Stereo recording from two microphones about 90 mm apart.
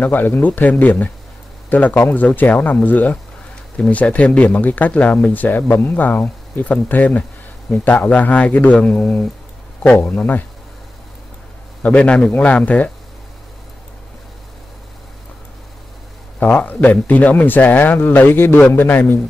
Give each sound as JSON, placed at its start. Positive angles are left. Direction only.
{"t": 0.0, "sound": "a man's voice", "side_deg": 20}
{"t": 11.8, "sound": "speech", "side_deg": 15}
{"t": 16.3, "sound": "a man's voice", "side_deg": 20}